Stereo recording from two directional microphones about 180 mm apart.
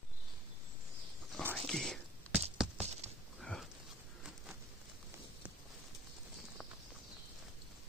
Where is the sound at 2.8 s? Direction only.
35° right (ahead or behind).